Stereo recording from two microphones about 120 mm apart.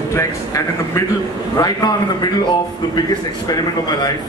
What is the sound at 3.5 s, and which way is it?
Speech, 35° left (ahead or behind).